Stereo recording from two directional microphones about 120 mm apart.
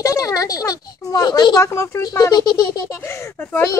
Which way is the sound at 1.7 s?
25° left (ahead or behind).